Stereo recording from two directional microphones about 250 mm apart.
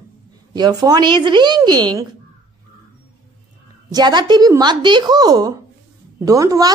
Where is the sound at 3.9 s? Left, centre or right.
Centre.